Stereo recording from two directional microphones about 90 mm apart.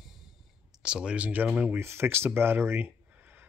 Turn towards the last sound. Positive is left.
turn(degrees=-25)  # may be behind; listen again after turning